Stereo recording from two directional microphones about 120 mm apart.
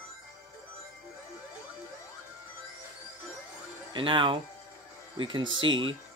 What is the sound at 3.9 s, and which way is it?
Speech, 45° right (ahead or behind).